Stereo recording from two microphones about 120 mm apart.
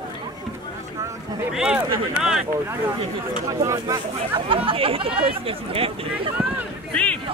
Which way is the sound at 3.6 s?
25° right (ahead or behind).